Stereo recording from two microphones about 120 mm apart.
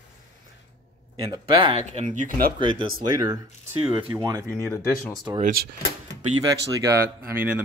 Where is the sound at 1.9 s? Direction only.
70° right (ahead or behind).